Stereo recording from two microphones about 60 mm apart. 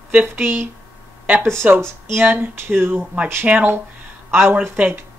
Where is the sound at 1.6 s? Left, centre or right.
Right.